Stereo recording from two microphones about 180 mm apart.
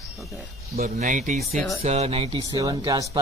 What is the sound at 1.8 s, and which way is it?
Speech, 35° right (ahead or behind).